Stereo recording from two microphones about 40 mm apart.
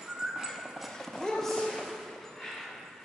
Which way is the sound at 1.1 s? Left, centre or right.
Centre.